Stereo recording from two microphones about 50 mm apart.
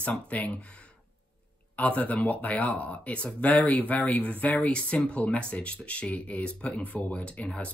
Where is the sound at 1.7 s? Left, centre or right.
Left.